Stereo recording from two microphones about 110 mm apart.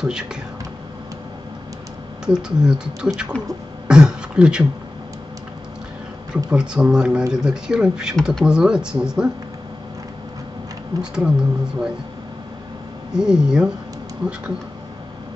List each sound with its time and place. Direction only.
0.0 s speech: 5° right (ahead or behind)
2.2 s speech: 5° right (ahead or behind)
3.8 s throat clearing: 10° right (ahead or behind)
6.3 s speech: 10° right (ahead or behind)
11.0 s speech: 5° right (ahead or behind)
13.1 s speech: 5° right (ahead or behind)